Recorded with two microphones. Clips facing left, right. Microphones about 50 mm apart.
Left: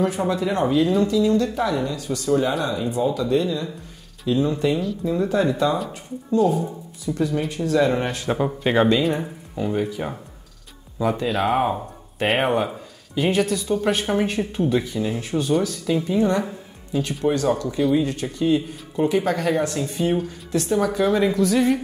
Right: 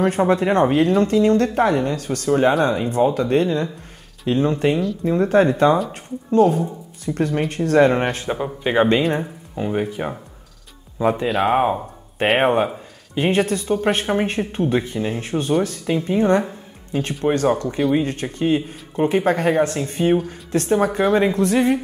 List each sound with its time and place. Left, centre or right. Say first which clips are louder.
0.0 s speech: right 4 dB; right
8.3 s speech: left 1 dB; centre
9.6 s speech: right 1 dB; right
11.2 s speech: right 2 dB; centre
12.4 s speech: right 4 dB; right